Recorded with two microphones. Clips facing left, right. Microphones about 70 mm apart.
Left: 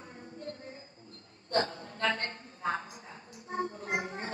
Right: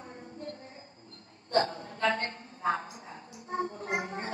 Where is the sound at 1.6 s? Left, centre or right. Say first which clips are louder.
Right 3 dB; right.